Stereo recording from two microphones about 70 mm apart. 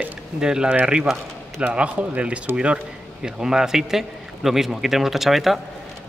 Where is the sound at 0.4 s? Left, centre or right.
Centre.